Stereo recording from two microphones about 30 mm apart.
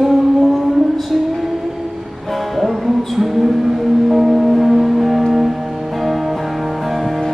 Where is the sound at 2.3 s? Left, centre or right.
Centre.